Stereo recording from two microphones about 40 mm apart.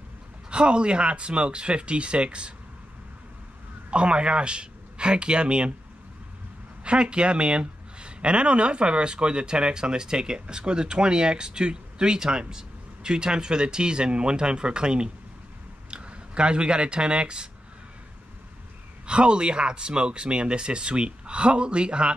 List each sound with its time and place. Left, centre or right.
0.5 s speech: right
3.9 s speech: right
6.8 s speech: right
19.0 s speech: right